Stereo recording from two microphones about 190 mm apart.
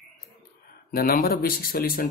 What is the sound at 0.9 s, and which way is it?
Speech, 50° left (ahead or behind).